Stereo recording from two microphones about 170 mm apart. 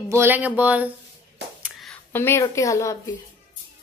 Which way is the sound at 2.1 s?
15° left (ahead or behind).